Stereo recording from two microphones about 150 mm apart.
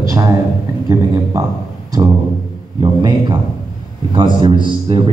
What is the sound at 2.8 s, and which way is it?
A man's voice, 25° right (ahead or behind).